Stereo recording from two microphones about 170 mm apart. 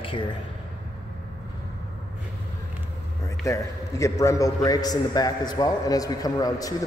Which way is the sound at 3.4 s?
15° left (ahead or behind).